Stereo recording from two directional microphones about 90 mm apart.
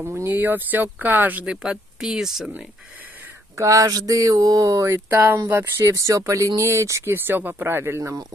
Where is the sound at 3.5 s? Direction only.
40° right (ahead or behind).